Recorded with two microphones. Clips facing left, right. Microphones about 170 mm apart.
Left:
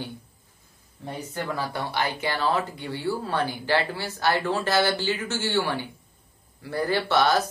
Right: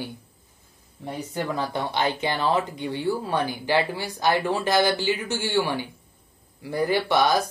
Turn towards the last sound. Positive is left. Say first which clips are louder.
# right 1 dB
turn(degrees=-15)  # may be behind; listen again after turning